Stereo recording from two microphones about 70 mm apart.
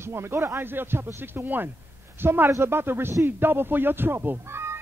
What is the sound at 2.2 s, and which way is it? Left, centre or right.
Speech, right.